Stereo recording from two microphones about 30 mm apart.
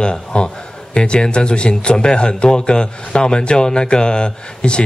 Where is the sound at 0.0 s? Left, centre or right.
Left.